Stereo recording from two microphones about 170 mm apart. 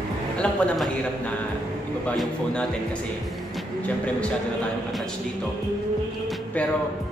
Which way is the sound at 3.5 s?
5° left (ahead or behind).